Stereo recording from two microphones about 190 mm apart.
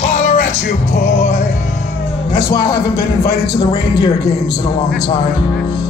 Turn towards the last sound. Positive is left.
turn(degrees=20)  # may be behind; listen again after turning